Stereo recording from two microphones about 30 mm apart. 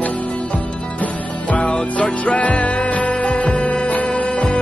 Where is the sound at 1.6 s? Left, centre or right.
Left.